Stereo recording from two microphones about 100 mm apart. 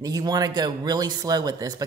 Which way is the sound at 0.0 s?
40° right (ahead or behind).